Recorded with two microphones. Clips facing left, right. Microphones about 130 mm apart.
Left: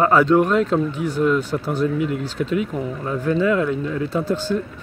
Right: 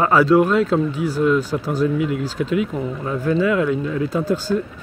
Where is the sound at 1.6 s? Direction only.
40° right (ahead or behind).